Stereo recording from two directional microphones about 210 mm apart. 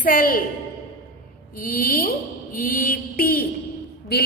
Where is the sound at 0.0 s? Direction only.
45° left (ahead or behind).